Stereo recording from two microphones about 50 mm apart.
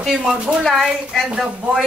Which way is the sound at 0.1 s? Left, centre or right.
Centre.